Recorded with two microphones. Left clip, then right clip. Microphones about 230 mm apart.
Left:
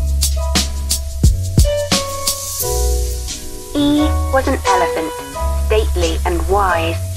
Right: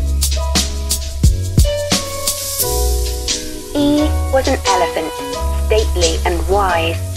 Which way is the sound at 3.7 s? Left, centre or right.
Right.